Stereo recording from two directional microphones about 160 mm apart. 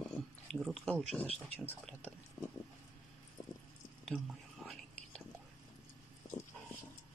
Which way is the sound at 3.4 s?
20° left (ahead or behind).